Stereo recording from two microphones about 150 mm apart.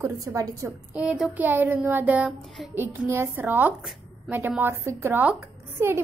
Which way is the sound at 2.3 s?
Centre (ahead or behind).